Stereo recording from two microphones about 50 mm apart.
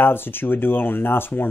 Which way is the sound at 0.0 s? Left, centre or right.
Left.